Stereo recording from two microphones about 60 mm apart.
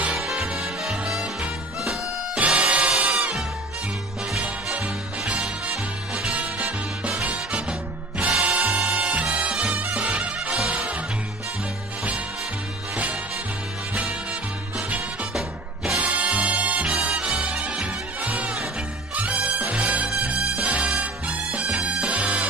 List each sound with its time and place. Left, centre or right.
0.2 s music: centre
2.3 s music: centre
3.1 s music: centre
5.2 s music: centre
12.9 s music: right
14.8 s music: right
15.3 s music: centre
16.0 s music: right